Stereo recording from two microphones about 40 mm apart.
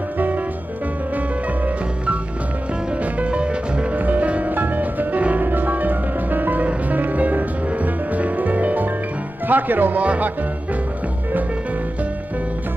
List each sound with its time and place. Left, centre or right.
3.2 s music: right
3.9 s music: right
9.5 s speech: right
10.0 s speech: right